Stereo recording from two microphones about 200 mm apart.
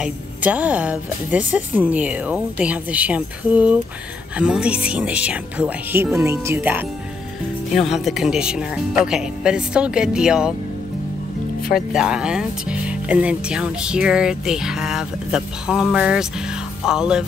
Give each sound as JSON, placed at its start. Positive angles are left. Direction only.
{"t": 0.0, "sound": "speech", "side_deg": -10}
{"t": 11.9, "sound": "speech", "side_deg": -5}